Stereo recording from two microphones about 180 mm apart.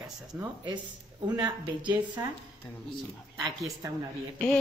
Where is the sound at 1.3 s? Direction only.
25° right (ahead or behind).